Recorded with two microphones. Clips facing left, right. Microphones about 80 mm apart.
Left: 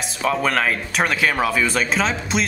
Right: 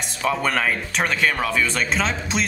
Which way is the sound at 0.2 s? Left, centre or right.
Centre.